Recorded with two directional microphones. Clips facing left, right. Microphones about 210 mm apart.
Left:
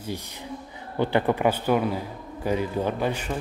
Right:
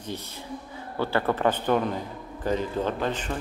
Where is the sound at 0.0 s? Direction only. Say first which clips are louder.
Left 2 dB; 15° left (ahead or behind).